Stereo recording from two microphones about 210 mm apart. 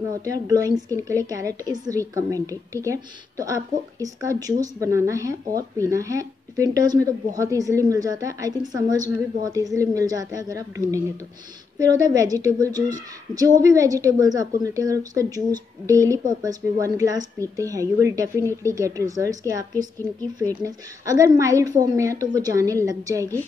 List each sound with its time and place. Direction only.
0.2 s a woman's voice: 15° right (ahead or behind)